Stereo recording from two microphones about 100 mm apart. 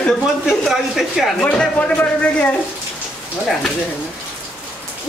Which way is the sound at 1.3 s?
15° left (ahead or behind).